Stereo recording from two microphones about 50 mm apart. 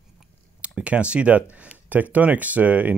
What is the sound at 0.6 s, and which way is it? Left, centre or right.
Speech, right.